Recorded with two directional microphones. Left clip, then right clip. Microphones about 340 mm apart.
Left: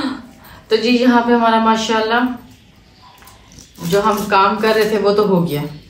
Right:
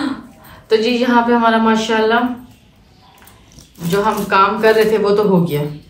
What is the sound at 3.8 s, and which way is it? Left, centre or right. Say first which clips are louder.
A woman's voice: left 1 dB; centre.